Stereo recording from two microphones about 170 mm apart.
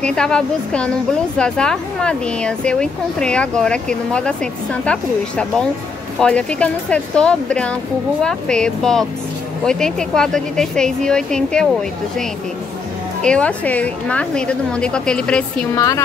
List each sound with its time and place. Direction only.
0.0 s a woman's voice: 5° left (ahead or behind)
15.7 s a woman's voice: 20° left (ahead or behind)